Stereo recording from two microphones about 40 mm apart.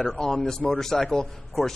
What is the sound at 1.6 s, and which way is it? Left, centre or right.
Speech, centre.